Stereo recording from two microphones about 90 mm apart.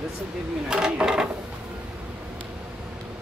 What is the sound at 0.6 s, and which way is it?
Speech, 10° right (ahead or behind).